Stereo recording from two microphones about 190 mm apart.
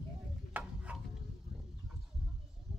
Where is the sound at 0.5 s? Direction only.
10° right (ahead or behind).